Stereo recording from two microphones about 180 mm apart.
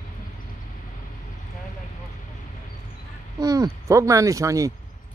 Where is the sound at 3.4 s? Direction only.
20° right (ahead or behind).